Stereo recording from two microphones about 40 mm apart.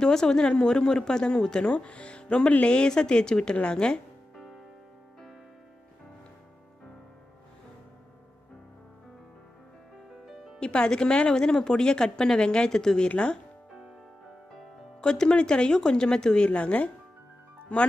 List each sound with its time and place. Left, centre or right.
0.0 s speech: centre
10.2 s music: centre
10.6 s speech: left
15.0 s speech: centre
16.4 s speech: left